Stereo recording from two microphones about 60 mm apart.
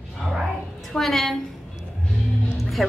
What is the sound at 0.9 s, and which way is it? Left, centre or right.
Speech, centre.